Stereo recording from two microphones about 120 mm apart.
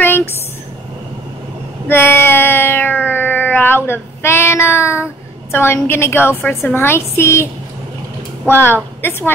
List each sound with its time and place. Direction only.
0.0 s a sound: 15° left (ahead or behind)
1.9 s cat: 20° left (ahead or behind)
5.5 s a woman's voice: 20° left (ahead or behind)
8.5 s a woman's voice: 15° left (ahead or behind)